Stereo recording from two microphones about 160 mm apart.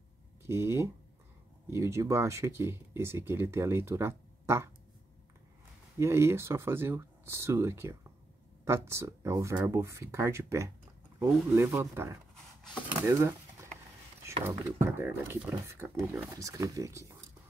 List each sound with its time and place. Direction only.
0.4 s speech: 15° right (ahead or behind)
5.9 s speech: 15° right (ahead or behind)
14.4 s speech: 15° right (ahead or behind)